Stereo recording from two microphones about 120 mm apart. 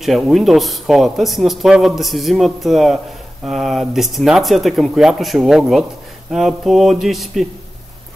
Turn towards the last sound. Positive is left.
turn(degrees=0)  # may be behind; listen again after turning